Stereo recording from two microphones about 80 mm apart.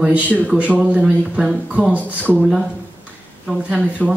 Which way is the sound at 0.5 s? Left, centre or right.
Centre.